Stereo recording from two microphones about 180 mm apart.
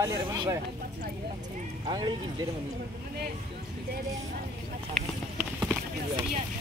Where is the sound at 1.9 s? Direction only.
25° right (ahead or behind).